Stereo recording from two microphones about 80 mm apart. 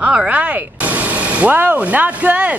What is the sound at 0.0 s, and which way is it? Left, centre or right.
Speech, centre.